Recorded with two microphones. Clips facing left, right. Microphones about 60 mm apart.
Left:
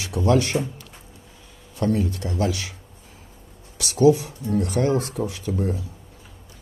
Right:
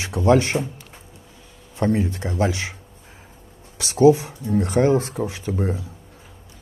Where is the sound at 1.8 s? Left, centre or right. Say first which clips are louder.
Right 2 dB; right.